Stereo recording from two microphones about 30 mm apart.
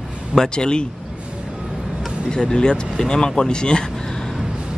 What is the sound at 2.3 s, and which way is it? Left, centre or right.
Speech, left.